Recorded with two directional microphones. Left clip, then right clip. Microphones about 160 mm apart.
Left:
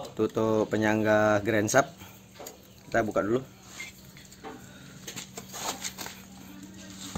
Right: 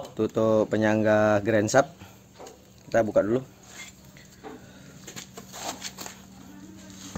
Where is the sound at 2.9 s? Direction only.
35° right (ahead or behind).